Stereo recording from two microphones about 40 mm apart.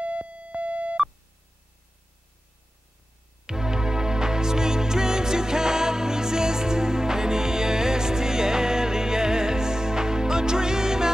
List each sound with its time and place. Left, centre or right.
0.0 s music: right
3.4 s music: centre